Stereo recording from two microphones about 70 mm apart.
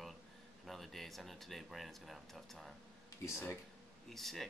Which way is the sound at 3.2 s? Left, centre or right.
Left.